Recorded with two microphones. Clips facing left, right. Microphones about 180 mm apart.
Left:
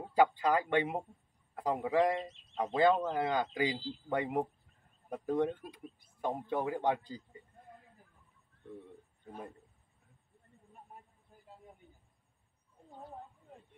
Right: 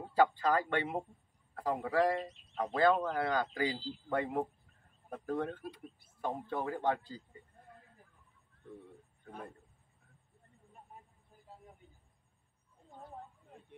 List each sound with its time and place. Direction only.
0.1 s a man's voice: 15° left (ahead or behind)
9.2 s a man's voice: 20° left (ahead or behind)